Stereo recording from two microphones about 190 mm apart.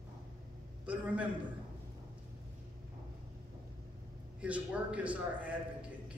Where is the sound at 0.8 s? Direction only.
5° right (ahead or behind).